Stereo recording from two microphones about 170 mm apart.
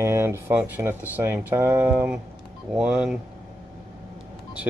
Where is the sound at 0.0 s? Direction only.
15° right (ahead or behind).